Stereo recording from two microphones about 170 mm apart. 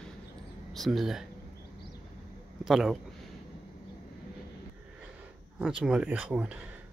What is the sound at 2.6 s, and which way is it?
Speech, centre (ahead or behind).